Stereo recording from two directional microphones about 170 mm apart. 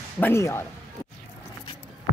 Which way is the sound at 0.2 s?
15° left (ahead or behind).